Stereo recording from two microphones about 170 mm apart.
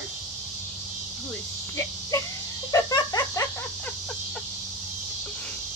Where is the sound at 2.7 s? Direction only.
20° left (ahead or behind).